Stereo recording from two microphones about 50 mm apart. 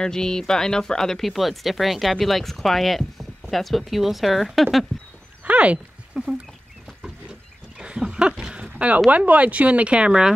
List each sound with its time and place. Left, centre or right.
0.0 s speech: centre
5.4 s dog: right
6.2 s chicken: centre
7.2 s wild animals: centre
8.6 s a sound: right
9.1 s speech: right